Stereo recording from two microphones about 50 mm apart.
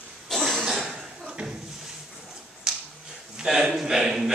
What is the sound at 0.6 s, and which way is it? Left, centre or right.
Chuckle, centre.